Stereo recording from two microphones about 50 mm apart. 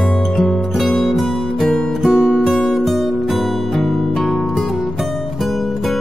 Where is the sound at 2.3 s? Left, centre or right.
Centre.